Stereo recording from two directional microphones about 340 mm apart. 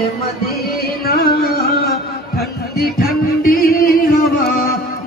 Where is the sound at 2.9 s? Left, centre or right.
Left.